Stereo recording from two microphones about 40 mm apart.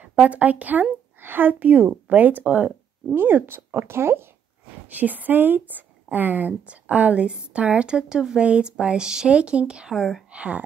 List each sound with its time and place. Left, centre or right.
0.0 s speech: right
1.2 s speech: right
3.2 s speech: right
4.8 s speech: right
6.6 s speech: right
7.2 s a woman's voice: right
9.3 s a woman's voice: right
9.8 s speech: centre
10.3 s speech: right